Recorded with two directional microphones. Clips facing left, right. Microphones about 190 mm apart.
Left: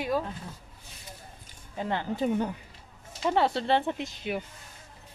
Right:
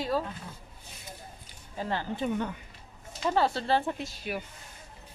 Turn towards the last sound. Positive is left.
turn(degrees=20)  # may be behind; listen again after turning